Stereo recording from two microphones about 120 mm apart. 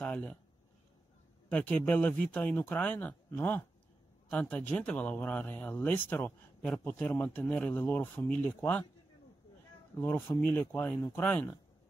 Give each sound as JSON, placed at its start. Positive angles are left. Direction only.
{"t": 0.0, "sound": "a sound", "side_deg": 15}
{"t": 1.5, "sound": "speech", "side_deg": 15}
{"t": 9.9, "sound": "speech", "side_deg": 15}